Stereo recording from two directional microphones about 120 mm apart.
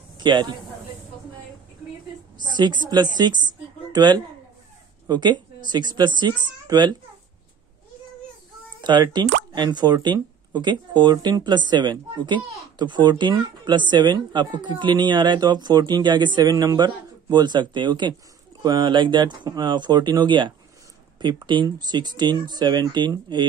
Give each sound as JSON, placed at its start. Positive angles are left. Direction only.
{"t": 0.2, "sound": "speech", "side_deg": -40}
{"t": 2.3, "sound": "a woman's voice", "side_deg": -40}
{"t": 8.8, "sound": "speech", "side_deg": -40}